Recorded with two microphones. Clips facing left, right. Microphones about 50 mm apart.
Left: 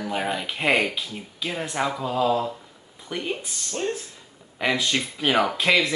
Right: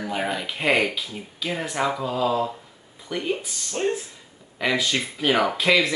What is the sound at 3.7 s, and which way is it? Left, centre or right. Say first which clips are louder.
Speech: right 3 dB; right.